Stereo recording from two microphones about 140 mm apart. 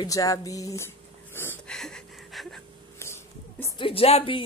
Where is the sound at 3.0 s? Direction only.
20° left (ahead or behind).